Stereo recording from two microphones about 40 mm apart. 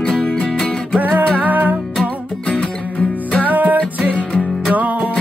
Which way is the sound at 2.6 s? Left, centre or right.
Left.